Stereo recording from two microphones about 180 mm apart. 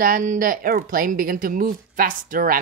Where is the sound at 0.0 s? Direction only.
45° right (ahead or behind).